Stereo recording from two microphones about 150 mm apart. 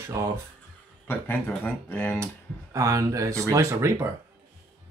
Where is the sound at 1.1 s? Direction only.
10° left (ahead or behind).